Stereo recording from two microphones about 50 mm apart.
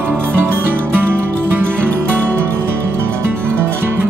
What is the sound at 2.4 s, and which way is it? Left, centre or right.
Music, right.